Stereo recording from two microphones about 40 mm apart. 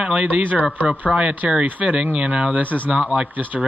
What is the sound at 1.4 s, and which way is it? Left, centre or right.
Speech, right.